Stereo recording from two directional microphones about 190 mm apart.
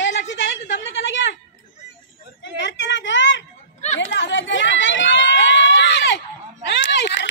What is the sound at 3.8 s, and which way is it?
Chatter, 35° left (ahead or behind).